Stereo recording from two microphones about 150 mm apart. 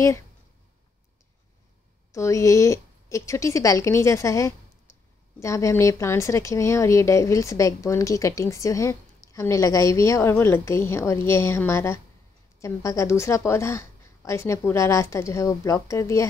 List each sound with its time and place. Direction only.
2.1 s speech: 20° left (ahead or behind)
4.9 s a sound: 20° left (ahead or behind)
5.4 s a woman's voice: 20° left (ahead or behind)